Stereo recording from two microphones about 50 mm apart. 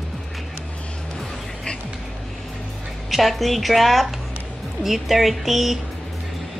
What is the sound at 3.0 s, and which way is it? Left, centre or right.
A woman's voice, centre.